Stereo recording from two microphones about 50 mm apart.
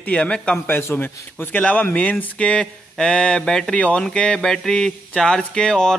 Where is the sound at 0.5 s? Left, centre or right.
Left.